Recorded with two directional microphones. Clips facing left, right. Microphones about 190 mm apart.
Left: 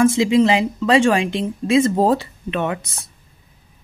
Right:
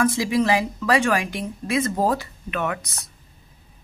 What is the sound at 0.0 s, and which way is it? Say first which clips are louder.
A woman's voice: left 6 dB; 25° left (ahead or behind).